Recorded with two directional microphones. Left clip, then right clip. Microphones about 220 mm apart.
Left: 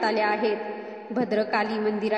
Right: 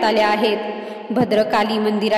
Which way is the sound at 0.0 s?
35° right (ahead or behind).